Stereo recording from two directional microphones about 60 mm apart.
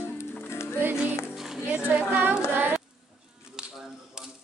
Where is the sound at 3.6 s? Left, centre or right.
Centre.